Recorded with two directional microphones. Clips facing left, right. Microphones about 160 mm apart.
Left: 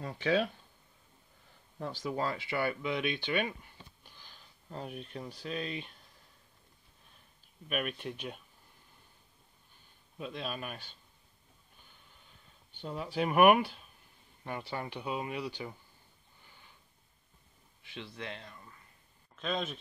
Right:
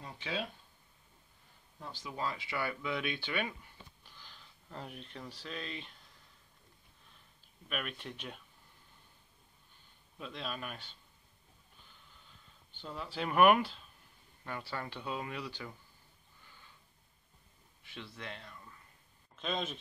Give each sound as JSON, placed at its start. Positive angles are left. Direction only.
{"t": 0.0, "sound": "speech", "side_deg": 50}
{"t": 1.8, "sound": "speech", "side_deg": 45}
{"t": 2.3, "sound": "speech", "side_deg": 25}
{"t": 7.7, "sound": "speech", "side_deg": 15}
{"t": 10.1, "sound": "speech", "side_deg": 15}
{"t": 12.8, "sound": "speech", "side_deg": 15}
{"t": 17.9, "sound": "speech", "side_deg": 20}
{"t": 19.4, "sound": "speech", "side_deg": 0}